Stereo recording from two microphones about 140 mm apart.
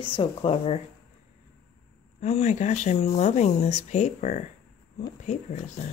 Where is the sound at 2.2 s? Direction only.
55° left (ahead or behind).